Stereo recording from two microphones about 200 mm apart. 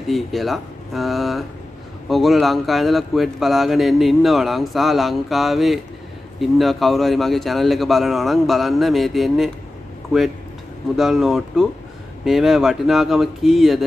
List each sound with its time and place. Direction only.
0.1 s speech: centre (ahead or behind)
11.0 s speech: centre (ahead or behind)